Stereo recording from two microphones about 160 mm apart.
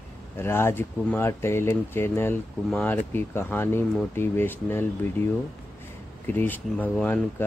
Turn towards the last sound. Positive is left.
turn(degrees=10)  # may be behind; listen again after turning